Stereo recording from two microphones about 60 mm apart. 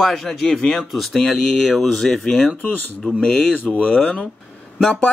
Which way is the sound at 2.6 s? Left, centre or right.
Left.